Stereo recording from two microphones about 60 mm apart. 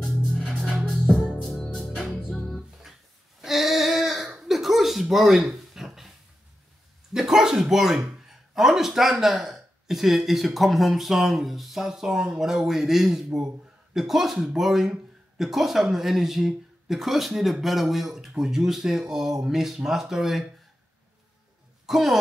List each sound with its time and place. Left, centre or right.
0.0 s music: centre
1.5 s music: centre
3.3 s female singing: centre
4.3 s chuckle: centre
5.1 s a sound: centre
7.2 s bow-wow: centre
8.5 s speech: centre
21.8 s speech: centre